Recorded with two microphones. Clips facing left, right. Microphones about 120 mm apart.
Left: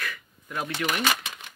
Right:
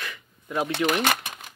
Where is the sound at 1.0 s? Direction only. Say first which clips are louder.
Right 2 dB; 50° right (ahead or behind).